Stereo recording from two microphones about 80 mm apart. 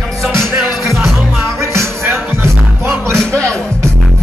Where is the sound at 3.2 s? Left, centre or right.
Centre.